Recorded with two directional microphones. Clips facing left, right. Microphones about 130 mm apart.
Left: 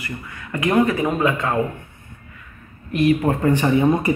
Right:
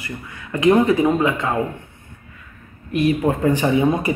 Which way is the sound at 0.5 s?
20° right (ahead or behind).